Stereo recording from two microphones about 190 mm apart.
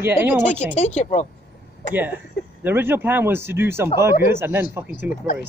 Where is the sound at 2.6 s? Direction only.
10° right (ahead or behind).